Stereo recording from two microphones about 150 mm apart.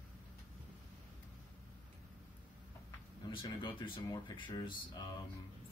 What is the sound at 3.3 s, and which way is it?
Speech, 30° left (ahead or behind).